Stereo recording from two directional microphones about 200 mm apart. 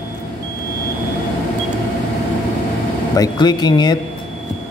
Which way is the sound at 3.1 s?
20° left (ahead or behind).